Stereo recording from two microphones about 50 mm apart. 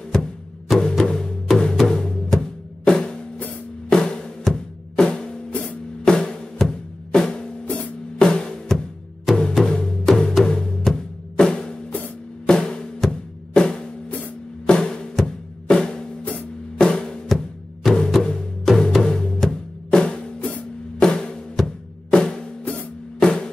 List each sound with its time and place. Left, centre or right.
0.1 s music: centre
3.9 s drum: centre
4.5 s music: centre
5.5 s music: left
6.0 s drum: centre
7.6 s music: left
12.4 s drum: centre
18.2 s music: centre
22.1 s drum: centre